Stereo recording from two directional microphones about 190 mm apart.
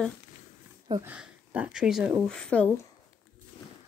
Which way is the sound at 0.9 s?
10° right (ahead or behind).